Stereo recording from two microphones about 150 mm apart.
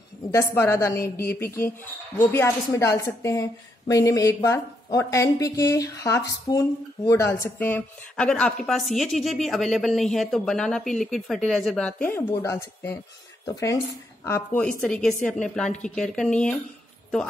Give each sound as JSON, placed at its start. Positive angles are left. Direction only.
{"t": 0.3, "sound": "a woman's voice", "side_deg": 20}
{"t": 14.6, "sound": "a woman's voice", "side_deg": 5}